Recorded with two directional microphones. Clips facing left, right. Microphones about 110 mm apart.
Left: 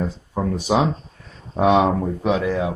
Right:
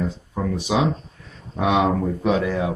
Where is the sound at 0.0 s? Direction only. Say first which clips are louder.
Left 1 dB; 30° left (ahead or behind).